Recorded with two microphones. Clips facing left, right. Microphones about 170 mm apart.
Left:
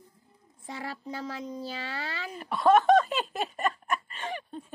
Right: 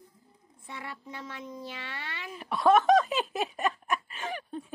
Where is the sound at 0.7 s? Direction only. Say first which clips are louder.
Left 5 dB; 35° left (ahead or behind).